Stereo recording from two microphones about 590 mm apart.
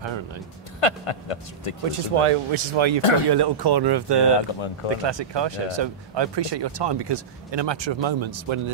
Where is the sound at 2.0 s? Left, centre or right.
Right.